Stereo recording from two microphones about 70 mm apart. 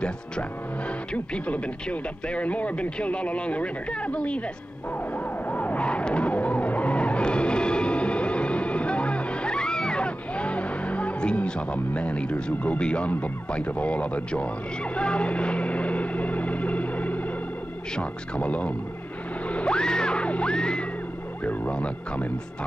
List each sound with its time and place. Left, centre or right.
0.0 s speech: centre
5.1 s emergency vehicle: left
15.0 s vehicle: centre
17.9 s speech: centre
19.4 s music: centre
21.5 s speech: centre